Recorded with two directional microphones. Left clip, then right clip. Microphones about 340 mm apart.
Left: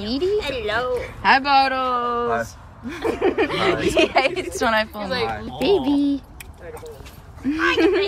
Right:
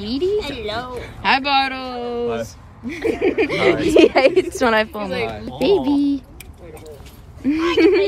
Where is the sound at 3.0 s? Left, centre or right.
Left.